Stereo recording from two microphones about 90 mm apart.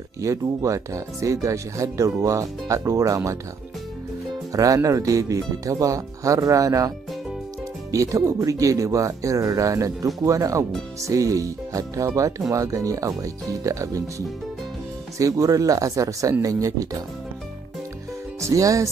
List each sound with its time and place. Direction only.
0.2 s speech: 35° right (ahead or behind)
4.5 s speech: 40° right (ahead or behind)
7.9 s speech: 35° right (ahead or behind)
18.4 s speech: 35° right (ahead or behind)